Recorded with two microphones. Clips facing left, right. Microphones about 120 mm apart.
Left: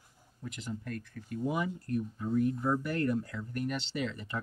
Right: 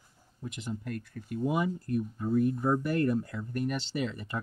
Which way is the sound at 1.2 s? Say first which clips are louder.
Right 3 dB; 30° right (ahead or behind).